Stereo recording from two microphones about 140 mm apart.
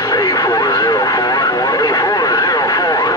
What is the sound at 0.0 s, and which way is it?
Radio, 25° left (ahead or behind).